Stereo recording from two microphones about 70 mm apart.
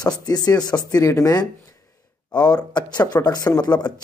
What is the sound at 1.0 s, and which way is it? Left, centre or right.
Speech, left.